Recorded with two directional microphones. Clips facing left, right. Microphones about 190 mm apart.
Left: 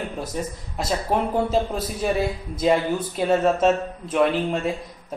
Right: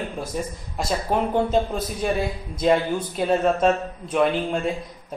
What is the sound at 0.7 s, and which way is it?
A man's voice, 5° left (ahead or behind).